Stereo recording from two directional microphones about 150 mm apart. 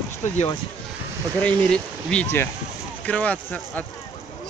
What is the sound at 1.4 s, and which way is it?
Speech, 10° left (ahead or behind).